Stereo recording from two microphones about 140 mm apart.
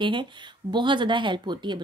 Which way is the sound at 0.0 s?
35° right (ahead or behind).